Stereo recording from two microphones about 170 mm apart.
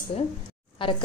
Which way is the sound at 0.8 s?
30° left (ahead or behind).